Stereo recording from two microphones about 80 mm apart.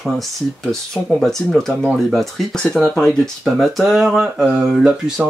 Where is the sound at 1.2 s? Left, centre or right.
Centre.